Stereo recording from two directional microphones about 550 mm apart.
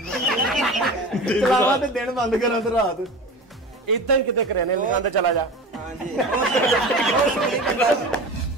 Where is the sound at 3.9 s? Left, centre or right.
Right.